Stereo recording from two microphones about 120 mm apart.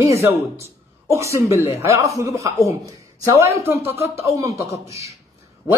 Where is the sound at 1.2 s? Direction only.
25° right (ahead or behind).